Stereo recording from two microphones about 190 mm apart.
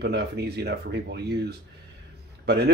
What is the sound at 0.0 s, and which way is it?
Speech, 60° right (ahead or behind).